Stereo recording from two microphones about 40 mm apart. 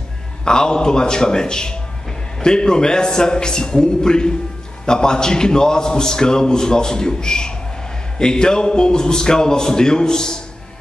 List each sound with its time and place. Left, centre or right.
0.5 s a man's voice: left